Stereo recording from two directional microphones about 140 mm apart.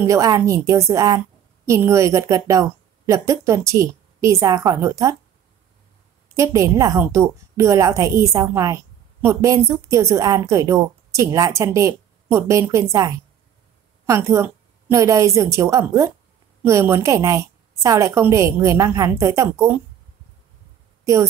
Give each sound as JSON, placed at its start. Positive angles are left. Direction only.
{"t": 0.0, "sound": "a woman's voice", "side_deg": -25}
{"t": 6.3, "sound": "a woman's voice", "side_deg": -20}
{"t": 21.0, "sound": "a sound", "side_deg": -20}